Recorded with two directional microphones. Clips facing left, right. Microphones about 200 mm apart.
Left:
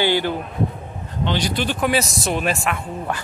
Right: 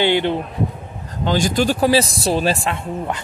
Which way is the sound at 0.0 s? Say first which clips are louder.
Right 3 dB; 25° right (ahead or behind).